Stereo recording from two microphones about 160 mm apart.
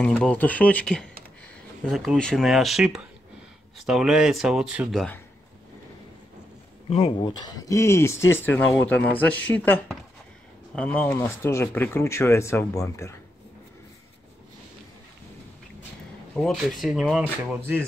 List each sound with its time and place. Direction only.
0.0 s speech: 5° left (ahead or behind)
6.9 s speech: 35° left (ahead or behind); by 13.1 s 20° left (ahead or behind)
16.3 s speech: centre (ahead or behind)